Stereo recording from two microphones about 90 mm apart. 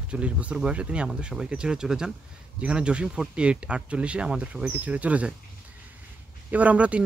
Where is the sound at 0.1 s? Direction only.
15° right (ahead or behind).